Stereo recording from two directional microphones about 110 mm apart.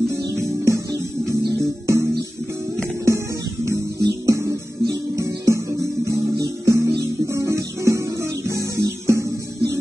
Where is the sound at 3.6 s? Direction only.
30° right (ahead or behind).